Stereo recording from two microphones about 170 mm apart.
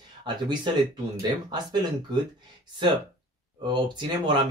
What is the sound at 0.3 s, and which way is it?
Speech, 25° right (ahead or behind).